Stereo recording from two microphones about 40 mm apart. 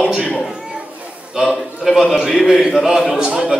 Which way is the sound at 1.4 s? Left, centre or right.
Centre.